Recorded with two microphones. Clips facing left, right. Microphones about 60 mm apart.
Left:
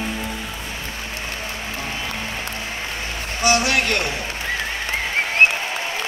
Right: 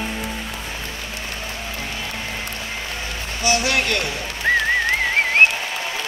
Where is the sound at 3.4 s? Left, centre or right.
Left.